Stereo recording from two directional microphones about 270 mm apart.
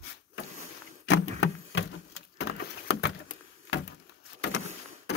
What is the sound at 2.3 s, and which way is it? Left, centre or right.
Door, left.